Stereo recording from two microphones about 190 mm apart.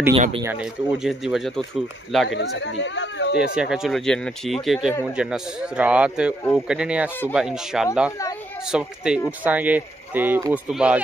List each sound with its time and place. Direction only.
0.4 s speech: 10° right (ahead or behind)
2.2 s speech: 70° left (ahead or behind)
3.5 s speech: 5° right (ahead or behind)